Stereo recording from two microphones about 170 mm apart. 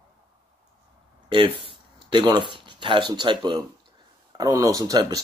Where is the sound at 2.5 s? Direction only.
30° right (ahead or behind).